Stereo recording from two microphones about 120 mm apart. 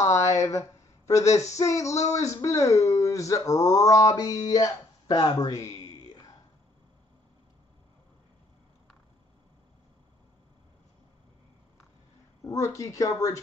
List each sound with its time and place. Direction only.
0.0 s a sound: 25° left (ahead or behind)
0.4 s speech: 25° left (ahead or behind)
12.4 s speech: 25° left (ahead or behind)